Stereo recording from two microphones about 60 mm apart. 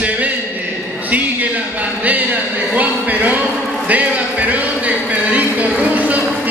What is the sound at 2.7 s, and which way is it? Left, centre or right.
Speech, right.